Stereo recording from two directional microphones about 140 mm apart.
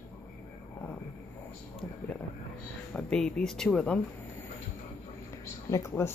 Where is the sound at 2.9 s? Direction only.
5° left (ahead or behind).